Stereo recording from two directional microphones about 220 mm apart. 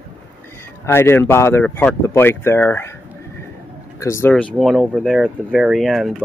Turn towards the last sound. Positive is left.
turn(degrees=0)  # may be behind; listen again after turning